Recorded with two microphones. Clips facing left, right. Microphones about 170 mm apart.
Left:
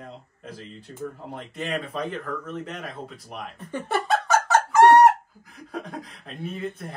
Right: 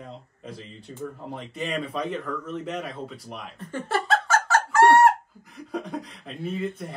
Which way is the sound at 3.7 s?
15° left (ahead or behind).